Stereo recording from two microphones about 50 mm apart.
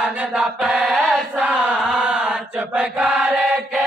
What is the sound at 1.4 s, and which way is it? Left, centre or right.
Chant, right.